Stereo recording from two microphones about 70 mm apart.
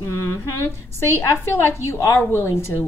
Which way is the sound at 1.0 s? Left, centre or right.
Left.